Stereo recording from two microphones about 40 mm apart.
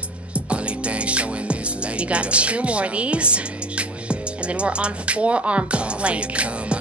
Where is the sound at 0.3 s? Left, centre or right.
Right.